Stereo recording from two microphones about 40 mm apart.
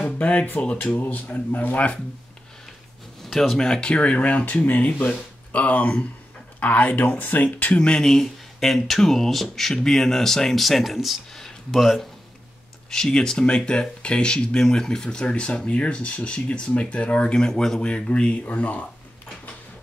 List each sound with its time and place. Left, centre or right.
0.0 s a man's voice: left
3.2 s a sound: centre
3.5 s a man's voice: centre; by 7.4 s left
7.4 s a man's voice: left
7.8 s speech: left
8.1 s speech: centre
11.3 s a sound: centre
11.8 s speech: centre
12.9 s speech: centre
17.5 s a man's voice: centre; by 18.9 s left